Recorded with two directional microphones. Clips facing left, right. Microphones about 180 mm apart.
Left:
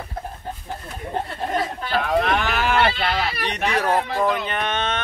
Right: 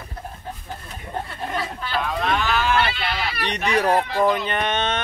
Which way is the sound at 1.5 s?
45° left (ahead or behind).